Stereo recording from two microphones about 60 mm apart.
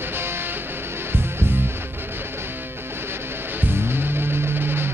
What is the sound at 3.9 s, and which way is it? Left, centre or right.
Music, right.